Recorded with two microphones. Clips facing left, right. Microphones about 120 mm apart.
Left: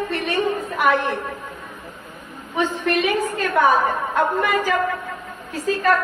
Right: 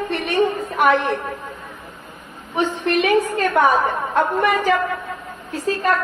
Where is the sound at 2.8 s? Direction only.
25° right (ahead or behind).